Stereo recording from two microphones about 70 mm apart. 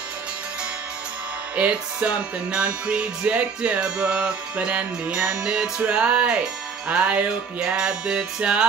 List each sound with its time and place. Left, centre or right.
1.5 s music: centre